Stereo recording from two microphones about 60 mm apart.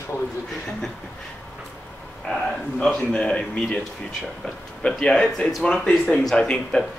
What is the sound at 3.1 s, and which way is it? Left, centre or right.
Speech, centre.